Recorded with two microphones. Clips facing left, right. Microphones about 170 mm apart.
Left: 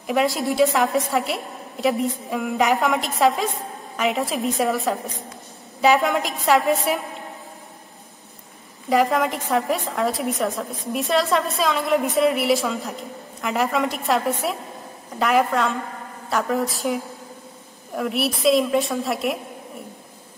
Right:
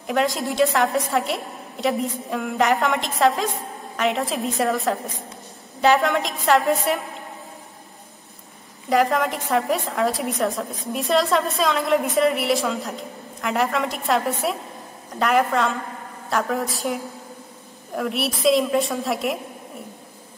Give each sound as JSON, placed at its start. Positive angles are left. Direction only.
{"t": 0.0, "sound": "a woman's voice", "side_deg": 0}
{"t": 8.8, "sound": "a woman's voice", "side_deg": 0}